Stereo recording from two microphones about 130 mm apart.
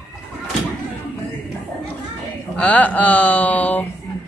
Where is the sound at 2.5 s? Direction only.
10° left (ahead or behind).